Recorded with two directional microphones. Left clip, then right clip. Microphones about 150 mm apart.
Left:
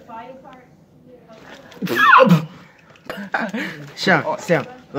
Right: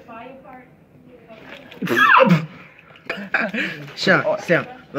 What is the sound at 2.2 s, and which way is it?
A man's voice, 60° left (ahead or behind).